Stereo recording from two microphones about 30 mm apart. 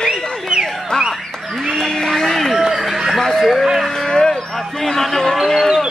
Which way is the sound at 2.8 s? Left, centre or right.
Centre.